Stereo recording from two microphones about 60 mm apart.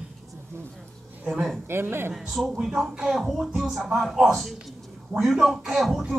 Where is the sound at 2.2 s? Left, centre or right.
Centre.